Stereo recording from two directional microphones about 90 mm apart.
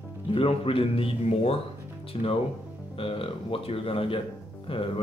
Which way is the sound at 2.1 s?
90° left.